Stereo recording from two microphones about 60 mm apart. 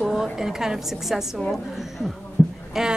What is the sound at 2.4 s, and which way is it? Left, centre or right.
Heart sounds, left.